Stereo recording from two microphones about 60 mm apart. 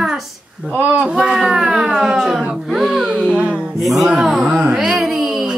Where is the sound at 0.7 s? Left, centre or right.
Right.